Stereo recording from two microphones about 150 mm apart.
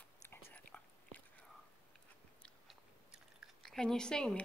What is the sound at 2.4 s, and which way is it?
Biting, 5° left (ahead or behind).